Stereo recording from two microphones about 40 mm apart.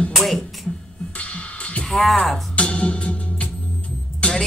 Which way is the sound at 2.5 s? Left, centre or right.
Left.